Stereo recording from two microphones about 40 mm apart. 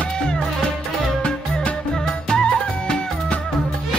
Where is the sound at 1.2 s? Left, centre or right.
Left.